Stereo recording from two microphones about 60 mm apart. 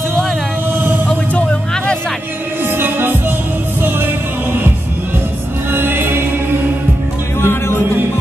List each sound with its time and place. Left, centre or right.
0.7 s music: right
1.0 s music: centre
2.6 s music: right
5.7 s music: right
7.3 s music: left